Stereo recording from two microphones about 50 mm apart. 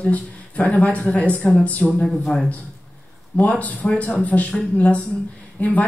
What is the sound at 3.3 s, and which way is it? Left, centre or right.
A woman's voice, left.